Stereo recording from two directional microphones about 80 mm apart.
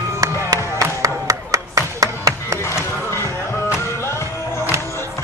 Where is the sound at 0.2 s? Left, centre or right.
Right.